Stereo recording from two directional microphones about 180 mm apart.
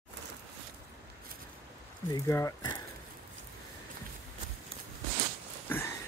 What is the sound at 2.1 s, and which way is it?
Speech, 15° left (ahead or behind).